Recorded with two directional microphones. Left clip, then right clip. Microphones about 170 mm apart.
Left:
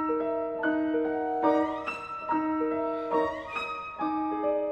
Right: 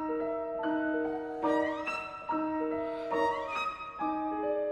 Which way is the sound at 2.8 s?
25° right (ahead or behind).